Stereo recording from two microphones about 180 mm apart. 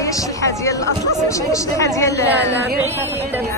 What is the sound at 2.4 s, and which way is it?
Speech, 70° right (ahead or behind).